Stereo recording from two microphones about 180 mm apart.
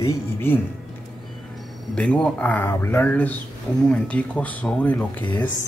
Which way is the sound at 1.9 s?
5° left (ahead or behind).